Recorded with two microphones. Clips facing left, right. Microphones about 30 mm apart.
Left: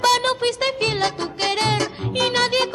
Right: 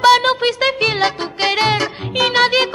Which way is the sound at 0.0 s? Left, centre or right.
Right.